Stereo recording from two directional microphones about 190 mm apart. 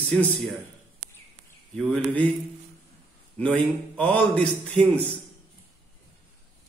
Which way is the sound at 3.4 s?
5° left (ahead or behind).